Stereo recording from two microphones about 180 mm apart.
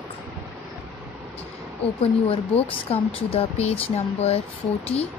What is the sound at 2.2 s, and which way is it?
Speech, 30° left (ahead or behind).